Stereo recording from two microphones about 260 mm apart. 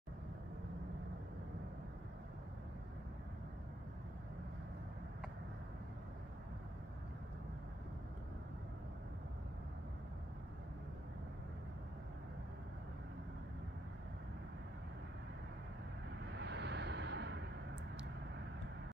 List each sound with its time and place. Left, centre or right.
16.3 s vehicle: right